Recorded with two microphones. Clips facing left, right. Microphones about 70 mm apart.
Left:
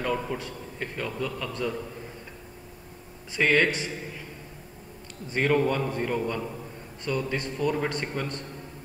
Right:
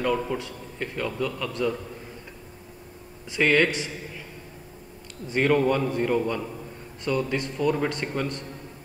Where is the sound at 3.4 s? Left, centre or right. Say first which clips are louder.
Right 1 dB; left.